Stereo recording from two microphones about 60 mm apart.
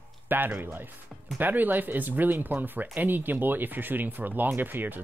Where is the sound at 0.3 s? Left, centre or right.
Right.